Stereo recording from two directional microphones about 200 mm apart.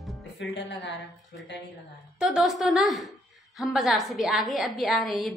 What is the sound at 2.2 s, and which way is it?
A woman's voice, centre (ahead or behind).